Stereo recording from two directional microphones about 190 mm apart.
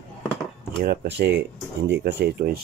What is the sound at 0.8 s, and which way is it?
Speech, 55° right (ahead or behind).